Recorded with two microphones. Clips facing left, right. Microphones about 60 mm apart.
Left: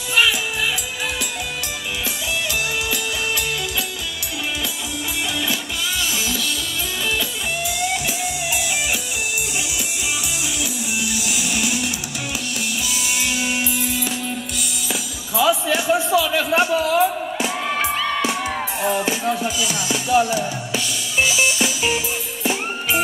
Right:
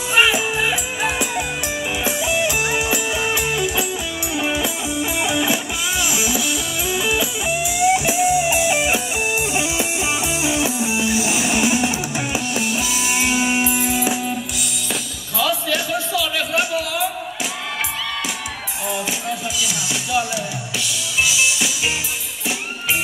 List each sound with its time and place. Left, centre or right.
0.1 s music: right
5.2 s music: centre
10.4 s music: right
13.2 s music: right
15.3 s a sound: left
19.9 s music: left